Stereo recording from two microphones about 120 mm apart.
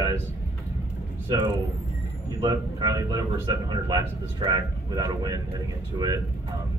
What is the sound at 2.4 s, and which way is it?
Speech, 35° right (ahead or behind).